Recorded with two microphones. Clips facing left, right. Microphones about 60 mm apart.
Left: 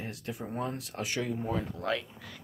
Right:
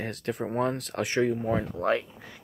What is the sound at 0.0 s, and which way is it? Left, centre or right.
Speech, right.